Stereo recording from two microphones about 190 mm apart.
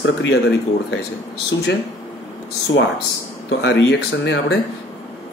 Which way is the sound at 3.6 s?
70° left (ahead or behind).